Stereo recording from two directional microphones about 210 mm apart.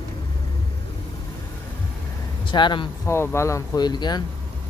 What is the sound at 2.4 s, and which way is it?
Speech, 20° left (ahead or behind).